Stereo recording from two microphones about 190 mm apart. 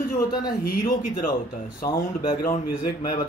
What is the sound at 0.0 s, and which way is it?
Speech, 50° left (ahead or behind).